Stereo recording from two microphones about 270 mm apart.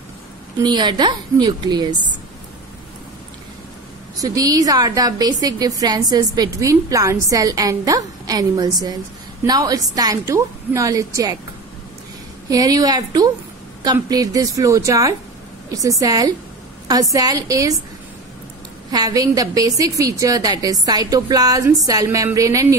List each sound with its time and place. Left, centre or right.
0.6 s a woman's voice: centre
4.2 s a woman's voice: centre
12.4 s a woman's voice: centre
18.9 s a woman's voice: centre